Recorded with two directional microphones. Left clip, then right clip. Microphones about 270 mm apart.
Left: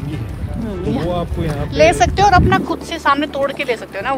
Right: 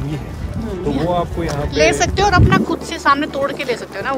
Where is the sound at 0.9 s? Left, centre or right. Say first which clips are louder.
Right 3 dB; centre.